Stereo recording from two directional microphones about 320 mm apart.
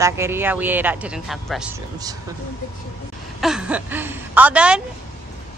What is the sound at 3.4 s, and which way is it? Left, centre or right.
Speech, centre.